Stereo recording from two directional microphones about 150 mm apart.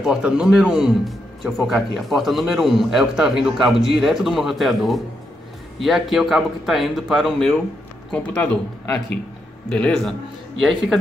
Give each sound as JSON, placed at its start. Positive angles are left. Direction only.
{"t": 0.0, "sound": "speech", "side_deg": -5}
{"t": 8.1, "sound": "speech", "side_deg": 10}